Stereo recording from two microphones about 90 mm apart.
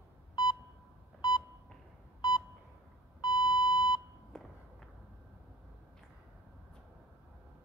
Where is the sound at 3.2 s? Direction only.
50° left (ahead or behind).